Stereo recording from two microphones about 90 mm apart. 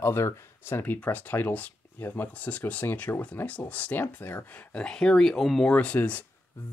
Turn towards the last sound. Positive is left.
turn(degrees=15)  # may be behind; listen again after turning